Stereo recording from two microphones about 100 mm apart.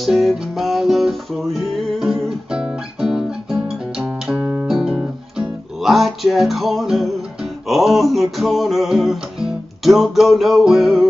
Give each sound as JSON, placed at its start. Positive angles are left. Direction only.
{"t": 0.0, "sound": "music", "side_deg": 0}
{"t": 4.4, "sound": "music", "side_deg": -25}
{"t": 4.6, "sound": "music", "side_deg": -5}